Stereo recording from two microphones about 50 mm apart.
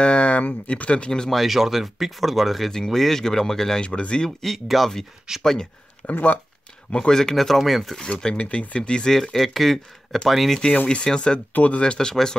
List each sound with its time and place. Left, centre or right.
0.0 s a sound: left
0.7 s speech: left
1.3 s speech: centre
3.8 s speech: left
4.4 s speech: centre
6.1 s speech: left
6.9 s speech: centre
7.9 s speech: centre
10.9 s speech: centre
11.5 s speech: left
11.8 s speech: centre